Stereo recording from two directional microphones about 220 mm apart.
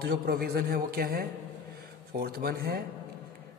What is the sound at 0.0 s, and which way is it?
A man's voice, 45° right (ahead or behind).